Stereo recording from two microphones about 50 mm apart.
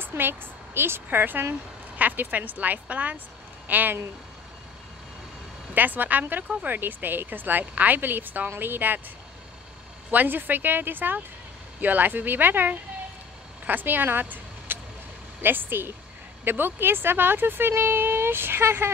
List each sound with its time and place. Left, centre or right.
0.0 s speech: right
5.8 s speech: right
10.1 s speech: right